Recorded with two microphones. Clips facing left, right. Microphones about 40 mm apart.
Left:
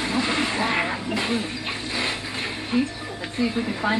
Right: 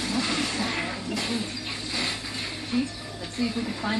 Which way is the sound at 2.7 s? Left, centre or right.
Left.